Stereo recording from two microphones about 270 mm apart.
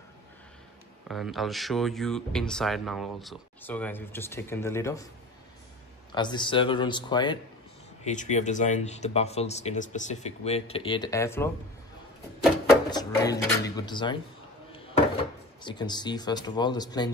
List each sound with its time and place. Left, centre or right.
1.0 s speech: centre
6.1 s speech: centre
8.0 s speech: left; by 11.5 s centre
12.9 s speech: centre
15.6 s speech: centre